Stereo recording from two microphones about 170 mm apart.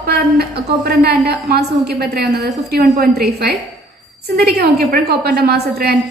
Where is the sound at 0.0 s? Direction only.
65° right (ahead or behind).